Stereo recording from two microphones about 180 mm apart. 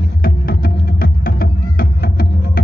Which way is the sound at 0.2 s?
55° left (ahead or behind).